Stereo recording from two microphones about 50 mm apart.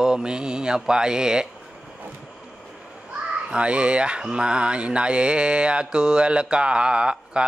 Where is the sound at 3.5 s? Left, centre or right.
Right.